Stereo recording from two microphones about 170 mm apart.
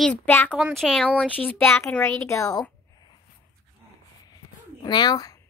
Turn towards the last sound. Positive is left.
turn(degrees=20)  # may be behind; listen again after turning